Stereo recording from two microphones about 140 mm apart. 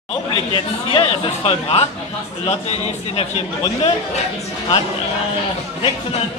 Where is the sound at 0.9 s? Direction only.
45° left (ahead or behind).